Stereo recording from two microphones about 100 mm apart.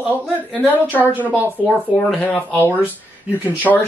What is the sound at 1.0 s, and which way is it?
Speech, 15° right (ahead or behind).